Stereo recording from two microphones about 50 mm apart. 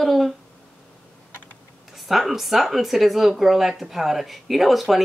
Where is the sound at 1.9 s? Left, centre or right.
Centre.